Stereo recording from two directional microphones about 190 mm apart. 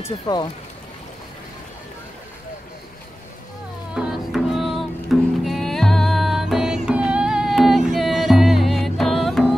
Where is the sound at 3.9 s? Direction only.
5° right (ahead or behind).